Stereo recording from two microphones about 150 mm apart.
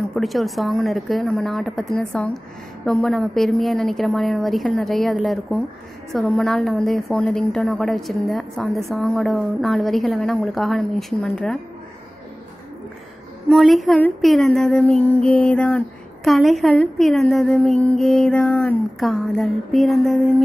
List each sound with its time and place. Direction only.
0.1 s a woman's voice: centre (ahead or behind)
13.5 s a woman's voice: centre (ahead or behind)